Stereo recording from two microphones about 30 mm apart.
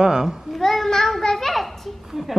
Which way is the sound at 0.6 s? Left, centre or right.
Centre.